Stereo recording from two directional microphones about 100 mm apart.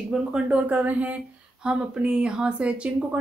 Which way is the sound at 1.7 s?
10° right (ahead or behind).